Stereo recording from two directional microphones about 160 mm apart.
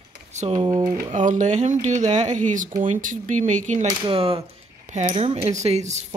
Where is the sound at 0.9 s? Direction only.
50° right (ahead or behind).